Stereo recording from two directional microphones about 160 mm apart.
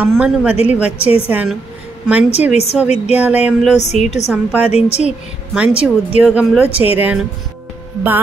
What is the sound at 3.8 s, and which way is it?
Speech, 45° left (ahead or behind).